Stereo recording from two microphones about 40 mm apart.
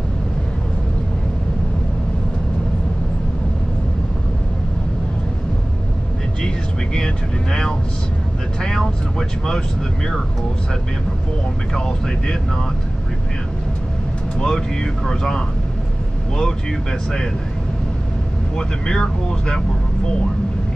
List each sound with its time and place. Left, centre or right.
6.4 s vehicle: centre
8.5 s vehicle: centre
11.7 s vehicle: centre
14.4 s speech: centre
18.6 s speech: centre